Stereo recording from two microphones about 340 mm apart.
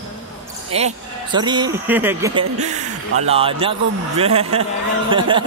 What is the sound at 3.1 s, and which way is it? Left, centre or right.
A man's voice, centre.